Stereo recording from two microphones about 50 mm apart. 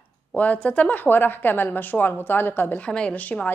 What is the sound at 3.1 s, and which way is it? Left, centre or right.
Speech, left.